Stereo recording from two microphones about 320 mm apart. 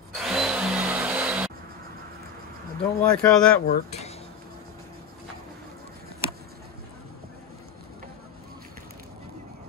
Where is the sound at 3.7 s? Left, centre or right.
Centre.